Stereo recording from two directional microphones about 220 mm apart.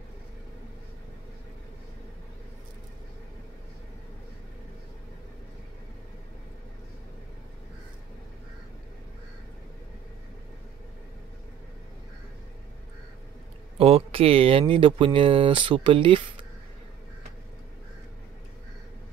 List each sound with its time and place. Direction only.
13.7 s speech: 25° right (ahead or behind)